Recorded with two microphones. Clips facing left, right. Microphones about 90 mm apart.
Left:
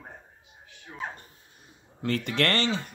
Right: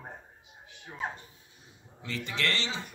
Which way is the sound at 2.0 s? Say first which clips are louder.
Left 7 dB; 55° left (ahead or behind).